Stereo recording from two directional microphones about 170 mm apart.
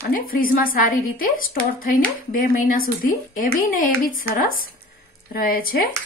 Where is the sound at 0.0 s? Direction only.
60° left (ahead or behind).